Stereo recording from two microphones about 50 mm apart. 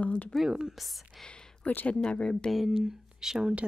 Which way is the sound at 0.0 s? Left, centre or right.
Left.